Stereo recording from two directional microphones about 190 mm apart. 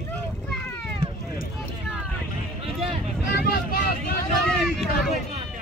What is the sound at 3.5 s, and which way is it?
Vehicle, 50° left (ahead or behind).